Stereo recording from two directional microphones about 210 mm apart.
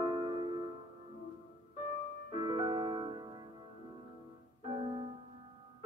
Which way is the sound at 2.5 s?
25° right (ahead or behind).